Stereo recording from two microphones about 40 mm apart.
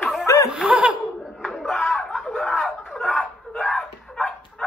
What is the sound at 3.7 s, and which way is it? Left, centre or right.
Bow-wow, centre.